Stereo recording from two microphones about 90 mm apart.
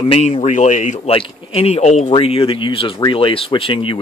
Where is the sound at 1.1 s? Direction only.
90° left.